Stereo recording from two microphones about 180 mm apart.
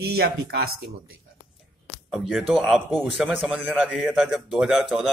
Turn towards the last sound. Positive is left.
turn(degrees=-5)  # may be behind; listen again after turning